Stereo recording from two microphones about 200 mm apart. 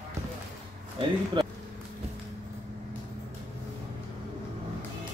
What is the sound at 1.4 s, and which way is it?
Vehicle, 25° right (ahead or behind).